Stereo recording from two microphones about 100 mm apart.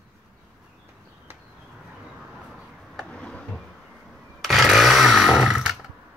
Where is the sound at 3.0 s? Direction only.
10° left (ahead or behind).